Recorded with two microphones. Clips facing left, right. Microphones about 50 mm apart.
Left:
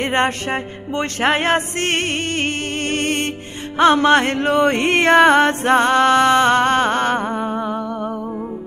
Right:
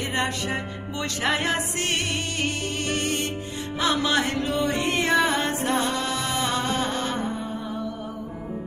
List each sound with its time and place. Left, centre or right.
0.0 s music: left